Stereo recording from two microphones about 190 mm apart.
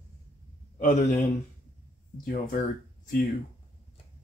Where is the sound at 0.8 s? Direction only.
45° left (ahead or behind).